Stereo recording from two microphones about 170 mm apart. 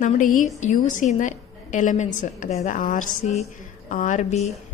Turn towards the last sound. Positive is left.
turn(degrees=45)  # may be behind; listen again after turning